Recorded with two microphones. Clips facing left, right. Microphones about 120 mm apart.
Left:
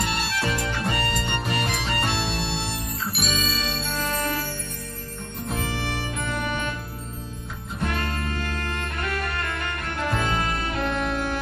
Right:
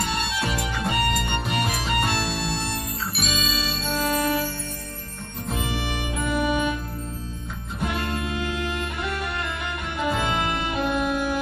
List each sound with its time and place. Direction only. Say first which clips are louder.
0.0 s music: even; centre (ahead or behind)
3.3 s music: even; 10° right (ahead or behind)
5.5 s music: right 1 dB; 10° right (ahead or behind)
7.8 s music: right 1 dB; 5° right (ahead or behind)
10.2 s music: right 1 dB; 20° right (ahead or behind)
10.7 s music: right 3 dB; 5° right (ahead or behind)